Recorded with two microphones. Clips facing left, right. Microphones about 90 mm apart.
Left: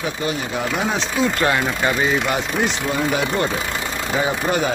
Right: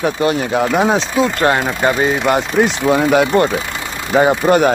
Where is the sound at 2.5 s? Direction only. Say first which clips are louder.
Right 8 dB; 75° right (ahead or behind).